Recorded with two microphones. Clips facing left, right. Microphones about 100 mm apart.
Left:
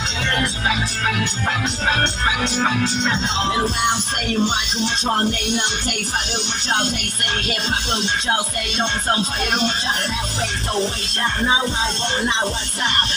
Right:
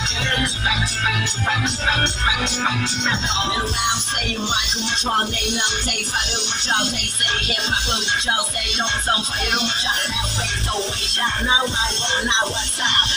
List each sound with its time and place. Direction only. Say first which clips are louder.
4.3 s music: left 5 dB; 40° left (ahead or behind)
8.7 s music: left 2 dB; 40° left (ahead or behind)